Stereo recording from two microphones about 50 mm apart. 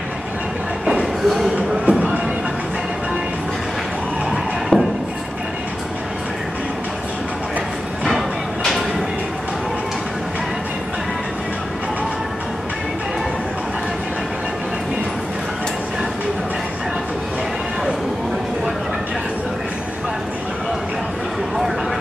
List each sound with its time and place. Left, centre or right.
0.8 s a sound: centre
1.9 s music: right
4.3 s music: centre